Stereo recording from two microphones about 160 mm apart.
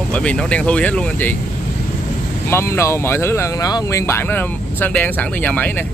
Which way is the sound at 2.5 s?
15° left (ahead or behind).